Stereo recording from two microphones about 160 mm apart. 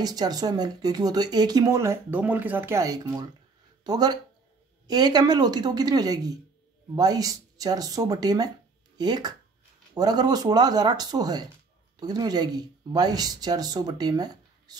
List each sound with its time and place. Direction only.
0.0 s speech: 25° right (ahead or behind)